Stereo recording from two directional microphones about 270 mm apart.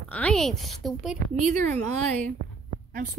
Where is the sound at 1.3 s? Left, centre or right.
Right.